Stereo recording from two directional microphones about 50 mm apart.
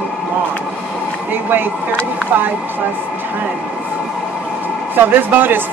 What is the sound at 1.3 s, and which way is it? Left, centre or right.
Speech, right.